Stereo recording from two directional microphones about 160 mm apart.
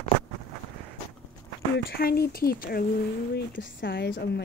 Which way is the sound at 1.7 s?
75° left (ahead or behind).